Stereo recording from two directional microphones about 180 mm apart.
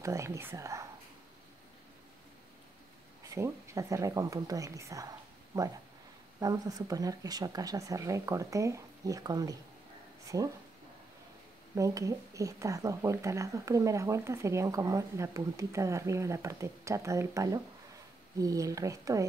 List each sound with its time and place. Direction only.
0.0 s a woman's voice: 15° right (ahead or behind)
3.3 s a woman's voice: 15° right (ahead or behind)
6.4 s speech: 20° right (ahead or behind)
11.7 s a woman's voice: 20° right (ahead or behind)